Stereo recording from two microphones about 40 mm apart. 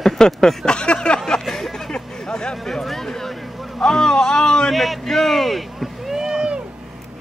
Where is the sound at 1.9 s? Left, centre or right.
Left.